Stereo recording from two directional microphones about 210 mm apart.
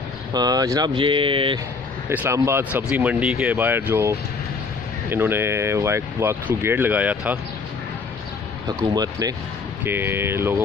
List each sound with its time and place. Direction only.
0.3 s speech: 20° right (ahead or behind)
2.0 s speech: 10° right (ahead or behind)
5.1 s speech: 10° right (ahead or behind)
8.6 s speech: 20° right (ahead or behind)